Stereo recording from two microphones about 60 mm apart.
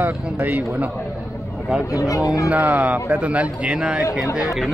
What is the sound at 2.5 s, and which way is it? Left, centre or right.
A man's voice, right.